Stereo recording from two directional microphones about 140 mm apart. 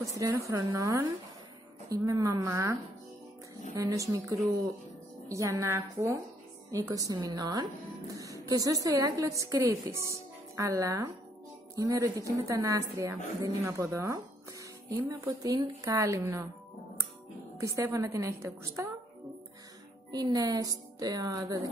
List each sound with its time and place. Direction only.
0.0 s a woman's voice: 20° right (ahead or behind)
17.6 s a woman's voice: 20° right (ahead or behind)
20.1 s a woman's voice: 30° right (ahead or behind)